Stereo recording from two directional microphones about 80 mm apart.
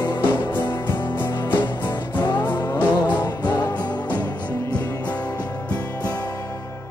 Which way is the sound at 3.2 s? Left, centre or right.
Left.